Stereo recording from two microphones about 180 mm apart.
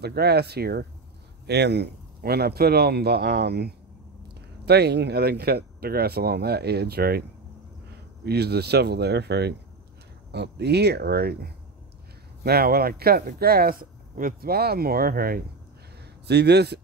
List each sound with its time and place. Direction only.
0.0 s speech: 65° right (ahead or behind)
16.0 s speech: 65° right (ahead or behind)